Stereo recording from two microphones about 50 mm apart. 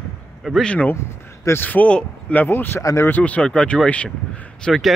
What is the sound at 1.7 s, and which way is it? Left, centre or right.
Speech, left.